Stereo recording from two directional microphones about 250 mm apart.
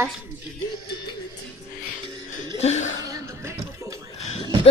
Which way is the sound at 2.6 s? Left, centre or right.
Left.